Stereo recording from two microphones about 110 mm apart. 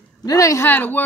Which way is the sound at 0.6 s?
15° left (ahead or behind).